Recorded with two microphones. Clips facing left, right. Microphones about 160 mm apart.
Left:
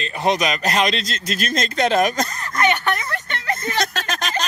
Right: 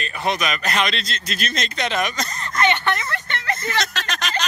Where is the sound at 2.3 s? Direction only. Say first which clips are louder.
Left 1 dB; 10° left (ahead or behind).